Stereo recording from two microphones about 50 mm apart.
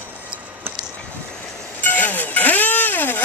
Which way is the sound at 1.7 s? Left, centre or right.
Left.